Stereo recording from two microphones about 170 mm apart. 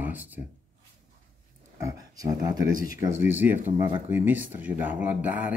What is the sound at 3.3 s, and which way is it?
Speech, 10° right (ahead or behind).